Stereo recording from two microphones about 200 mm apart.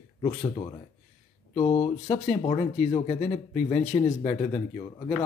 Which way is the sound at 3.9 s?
15° left (ahead or behind).